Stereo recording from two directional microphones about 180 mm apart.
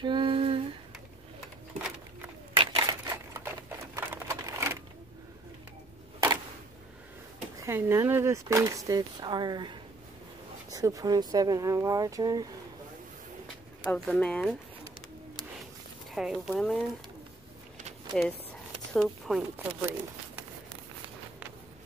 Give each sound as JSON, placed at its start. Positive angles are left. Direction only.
{"t": 0.0, "sound": "humming", "side_deg": -25}
{"t": 2.5, "sound": "a sound", "side_deg": -25}
{"t": 7.6, "sound": "speech", "side_deg": -15}
{"t": 13.8, "sound": "speech", "side_deg": 5}
{"t": 16.2, "sound": "speech", "side_deg": 0}
{"t": 18.9, "sound": "speech", "side_deg": 0}
{"t": 19.8, "sound": "a sound", "side_deg": -10}